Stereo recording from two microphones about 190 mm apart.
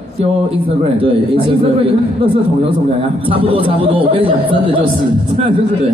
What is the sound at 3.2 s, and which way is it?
Speech, 30° right (ahead or behind).